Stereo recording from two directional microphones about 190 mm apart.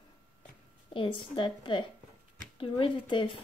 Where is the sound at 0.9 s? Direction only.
25° left (ahead or behind).